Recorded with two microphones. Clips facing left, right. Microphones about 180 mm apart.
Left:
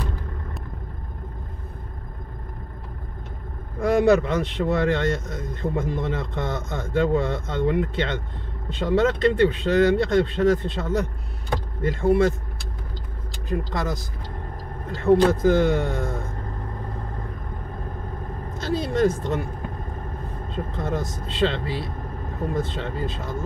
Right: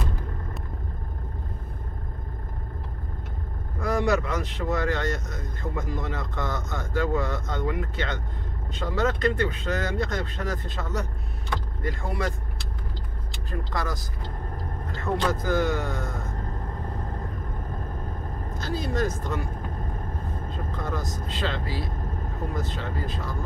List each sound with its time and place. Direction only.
3.8 s speech: 30° left (ahead or behind)
13.5 s speech: 25° left (ahead or behind)
15.1 s speech: 25° left (ahead or behind)
18.7 s speech: 25° left (ahead or behind)
20.5 s speech: 25° left (ahead or behind)